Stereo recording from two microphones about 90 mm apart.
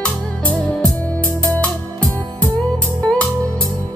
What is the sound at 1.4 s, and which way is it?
Music, 15° left (ahead or behind).